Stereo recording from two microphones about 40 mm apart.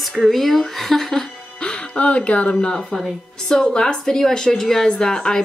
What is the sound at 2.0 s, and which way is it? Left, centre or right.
Speech, left.